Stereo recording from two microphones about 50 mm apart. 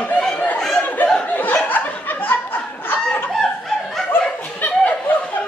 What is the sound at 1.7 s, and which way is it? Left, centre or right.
Chuckle, left.